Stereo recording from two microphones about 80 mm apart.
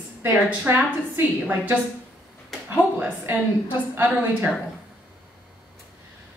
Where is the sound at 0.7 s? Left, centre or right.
Right.